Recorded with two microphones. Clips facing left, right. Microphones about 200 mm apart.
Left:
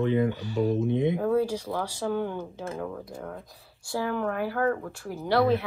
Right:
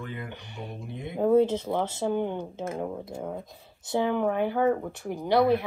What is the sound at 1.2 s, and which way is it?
Speech, 25° right (ahead or behind).